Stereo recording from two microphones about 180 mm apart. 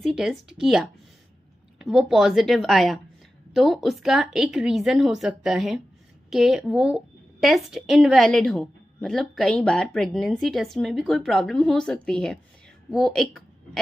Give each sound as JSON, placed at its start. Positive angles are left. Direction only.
{"t": 0.0, "sound": "a woman's voice", "side_deg": 0}